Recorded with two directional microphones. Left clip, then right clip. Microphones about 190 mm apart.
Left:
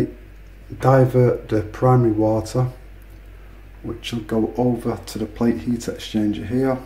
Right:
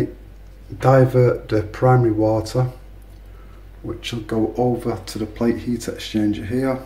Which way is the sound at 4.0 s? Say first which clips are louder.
Even; 10° left (ahead or behind).